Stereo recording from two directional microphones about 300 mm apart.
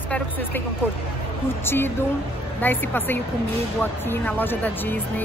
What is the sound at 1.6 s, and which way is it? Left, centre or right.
Speech, centre.